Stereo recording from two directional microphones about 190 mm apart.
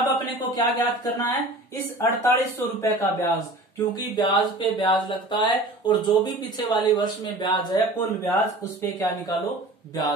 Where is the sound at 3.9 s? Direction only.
25° left (ahead or behind).